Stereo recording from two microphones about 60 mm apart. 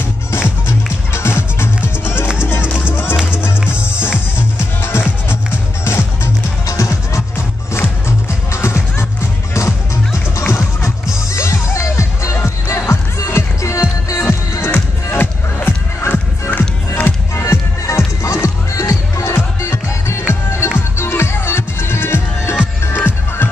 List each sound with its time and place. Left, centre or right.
0.3 s music: left
4.4 s music: left
7.3 s music: left
14.7 s music: left